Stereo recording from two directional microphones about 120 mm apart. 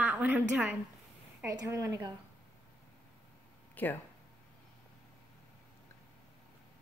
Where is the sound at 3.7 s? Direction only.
15° left (ahead or behind).